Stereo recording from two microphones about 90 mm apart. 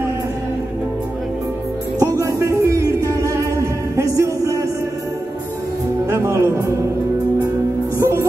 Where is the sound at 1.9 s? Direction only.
35° right (ahead or behind).